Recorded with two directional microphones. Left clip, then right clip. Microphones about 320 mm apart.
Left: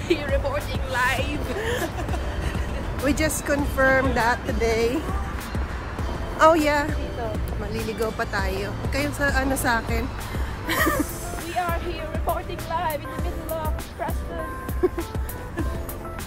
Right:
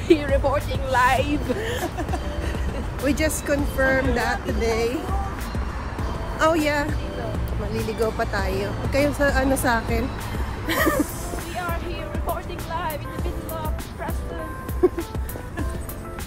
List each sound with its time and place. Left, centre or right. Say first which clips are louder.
0.1 s speech: right 5 dB; centre
0.8 s music: right 5 dB; centre
3.0 s speech: right 1 dB; centre
6.3 s speech: left 3 dB; centre
12.7 s music: left 2 dB; left
14.8 s music: right 4 dB; centre